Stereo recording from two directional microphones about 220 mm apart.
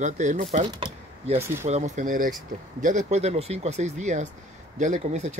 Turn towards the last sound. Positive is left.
turn(degrees=-35)  # may be behind; listen again after turning